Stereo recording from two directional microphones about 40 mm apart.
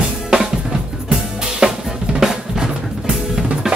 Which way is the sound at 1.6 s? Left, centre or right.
Right.